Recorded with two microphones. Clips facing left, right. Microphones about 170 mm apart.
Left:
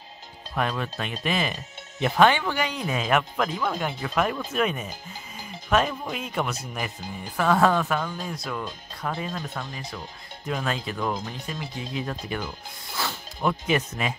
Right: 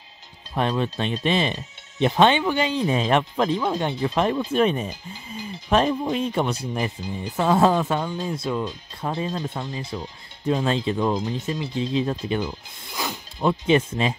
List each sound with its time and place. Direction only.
0.6 s speech: 25° right (ahead or behind)